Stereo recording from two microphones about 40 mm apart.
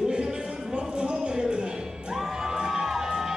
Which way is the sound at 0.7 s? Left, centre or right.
Right.